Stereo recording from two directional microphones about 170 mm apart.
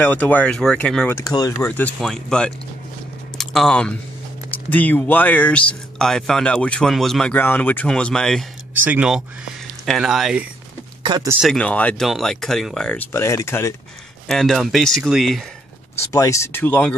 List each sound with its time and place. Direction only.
0.0 s speech: 10° left (ahead or behind)
1.2 s speech: 20° left (ahead or behind); by 8.5 s 5° left (ahead or behind)
8.8 s speech: 5° right (ahead or behind)
11.0 s speech: 25° right (ahead or behind)
11.4 s speech: 5° left (ahead or behind)
14.2 s speech: centre (ahead or behind)
16.1 s speech: 20° left (ahead or behind)